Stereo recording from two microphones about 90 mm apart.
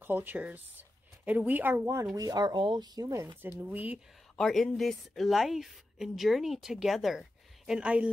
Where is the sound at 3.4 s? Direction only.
20° right (ahead or behind).